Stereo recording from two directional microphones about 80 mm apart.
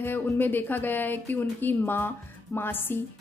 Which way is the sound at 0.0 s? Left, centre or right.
Left.